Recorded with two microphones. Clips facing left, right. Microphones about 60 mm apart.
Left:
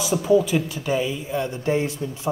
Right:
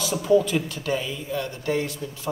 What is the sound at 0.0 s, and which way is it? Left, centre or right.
A man's voice, centre.